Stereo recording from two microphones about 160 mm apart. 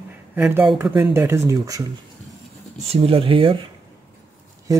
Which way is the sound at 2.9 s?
35° right (ahead or behind).